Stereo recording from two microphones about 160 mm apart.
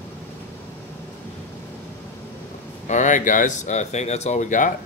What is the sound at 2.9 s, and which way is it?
Speech, 50° left (ahead or behind).